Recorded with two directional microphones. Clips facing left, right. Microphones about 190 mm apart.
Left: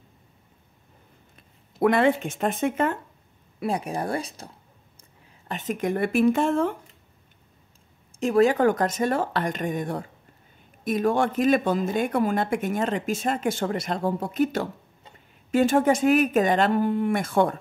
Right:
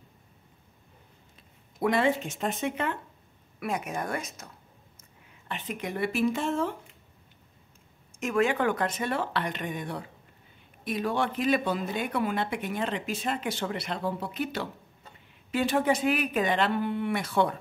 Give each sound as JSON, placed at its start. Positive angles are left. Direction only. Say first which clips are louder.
{"t": 1.8, "sound": "speech", "louder": "left 5 dB", "side_deg": 55}
{"t": 3.5, "sound": "speech", "louder": "left 4 dB", "side_deg": 30}
{"t": 5.5, "sound": "a woman's voice", "louder": "left 8 dB", "side_deg": 45}
{"t": 8.2, "sound": "a woman's voice", "louder": "left 7 dB", "side_deg": 35}